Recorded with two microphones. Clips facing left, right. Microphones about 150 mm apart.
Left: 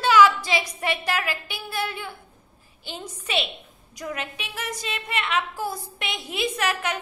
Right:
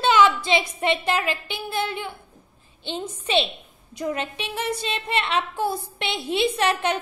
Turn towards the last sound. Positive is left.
turn(degrees=-30)  # may be behind; listen again after turning